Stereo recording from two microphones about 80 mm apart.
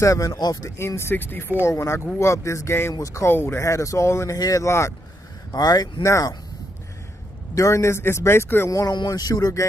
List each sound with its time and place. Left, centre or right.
0.0 s speech: left
1.6 s speech: left
3.3 s speech: left
4.4 s speech: left
4.6 s speech: left
5.5 s speech: left
6.0 s speech: left
7.5 s speech: left
8.6 s speech: left
8.9 s speech: left